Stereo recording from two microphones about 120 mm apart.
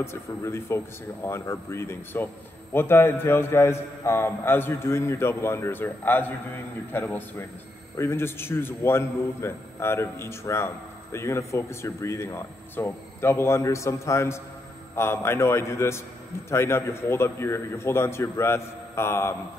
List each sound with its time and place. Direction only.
0.0 s a man's voice: 20° left (ahead or behind)